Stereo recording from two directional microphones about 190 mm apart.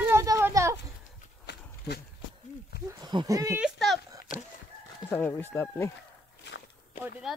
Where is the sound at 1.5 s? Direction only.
65° left (ahead or behind).